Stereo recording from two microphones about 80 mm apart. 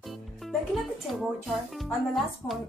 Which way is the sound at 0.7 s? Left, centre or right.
Centre.